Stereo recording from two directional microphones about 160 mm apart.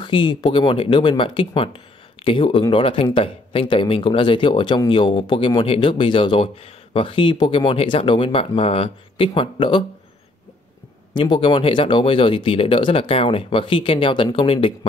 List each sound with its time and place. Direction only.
0.0 s speech: 30° left (ahead or behind)
11.1 s speech: 30° left (ahead or behind)